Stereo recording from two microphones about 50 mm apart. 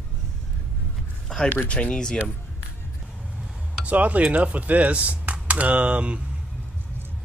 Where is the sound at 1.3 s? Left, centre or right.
Centre.